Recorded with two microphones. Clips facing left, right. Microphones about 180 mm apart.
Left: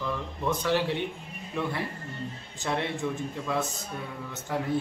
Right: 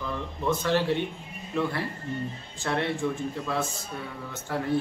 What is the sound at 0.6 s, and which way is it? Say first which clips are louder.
Speech: right 2 dB; 15° left (ahead or behind).